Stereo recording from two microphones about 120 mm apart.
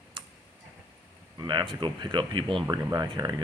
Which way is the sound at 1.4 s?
40° right (ahead or behind).